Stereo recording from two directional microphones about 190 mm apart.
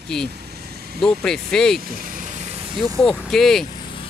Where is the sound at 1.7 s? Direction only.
50° right (ahead or behind).